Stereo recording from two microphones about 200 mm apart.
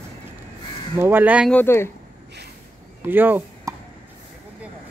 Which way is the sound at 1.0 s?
10° right (ahead or behind).